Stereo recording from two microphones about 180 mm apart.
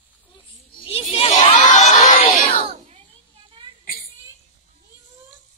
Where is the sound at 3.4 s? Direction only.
25° right (ahead or behind).